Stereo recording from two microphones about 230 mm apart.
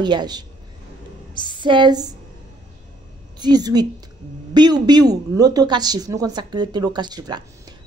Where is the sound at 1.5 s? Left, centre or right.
Centre.